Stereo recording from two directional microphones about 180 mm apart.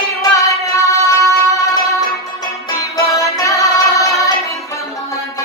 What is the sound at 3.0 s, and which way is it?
Music, 15° left (ahead or behind).